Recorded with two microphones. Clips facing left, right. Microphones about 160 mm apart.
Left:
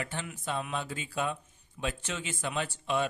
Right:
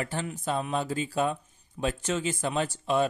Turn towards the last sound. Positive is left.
turn(degrees=-40)  # may be behind; listen again after turning